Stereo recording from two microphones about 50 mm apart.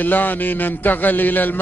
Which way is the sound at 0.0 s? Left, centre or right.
Left.